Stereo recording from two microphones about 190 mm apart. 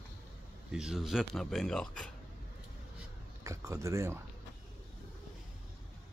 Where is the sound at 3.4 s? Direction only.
15° right (ahead or behind).